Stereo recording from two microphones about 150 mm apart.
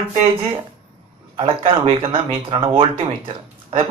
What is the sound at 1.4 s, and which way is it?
A man's voice, 35° right (ahead or behind).